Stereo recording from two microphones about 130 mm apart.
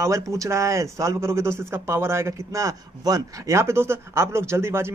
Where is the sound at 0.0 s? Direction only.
25° right (ahead or behind).